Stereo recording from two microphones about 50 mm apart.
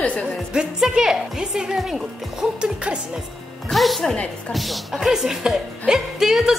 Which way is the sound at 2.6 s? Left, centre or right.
Centre.